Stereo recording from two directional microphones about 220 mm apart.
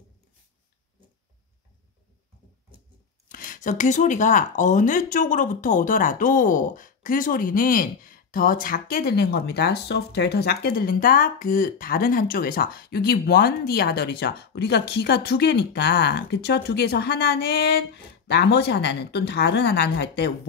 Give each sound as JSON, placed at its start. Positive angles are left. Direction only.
{"t": 3.3, "sound": "speech", "side_deg": 40}